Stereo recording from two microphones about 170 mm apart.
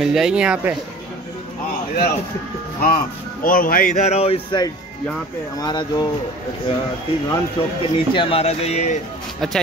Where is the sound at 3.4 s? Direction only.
55° left (ahead or behind); by 6.0 s 25° left (ahead or behind).